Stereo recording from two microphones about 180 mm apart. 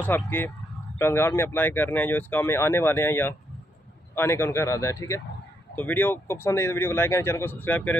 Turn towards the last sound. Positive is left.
turn(degrees=10)  # may be behind; listen again after turning